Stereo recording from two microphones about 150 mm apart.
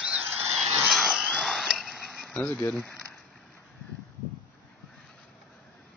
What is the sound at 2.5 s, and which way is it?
Speech, 15° left (ahead or behind).